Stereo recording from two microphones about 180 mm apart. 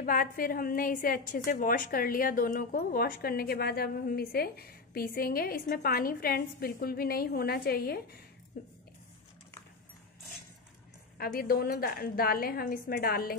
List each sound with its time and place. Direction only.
0.0 s a woman's voice: 50° left (ahead or behind)
11.1 s a woman's voice: 55° left (ahead or behind)